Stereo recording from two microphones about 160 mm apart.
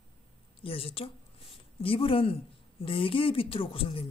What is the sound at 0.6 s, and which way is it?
Speech, 35° left (ahead or behind).